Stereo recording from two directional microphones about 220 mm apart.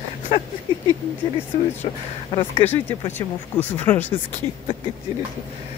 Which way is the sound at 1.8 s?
25° left (ahead or behind).